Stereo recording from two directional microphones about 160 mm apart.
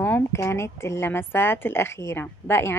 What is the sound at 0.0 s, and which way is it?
A woman's voice, 15° left (ahead or behind).